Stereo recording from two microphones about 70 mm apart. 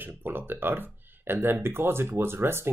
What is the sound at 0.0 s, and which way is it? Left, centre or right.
Speech, right.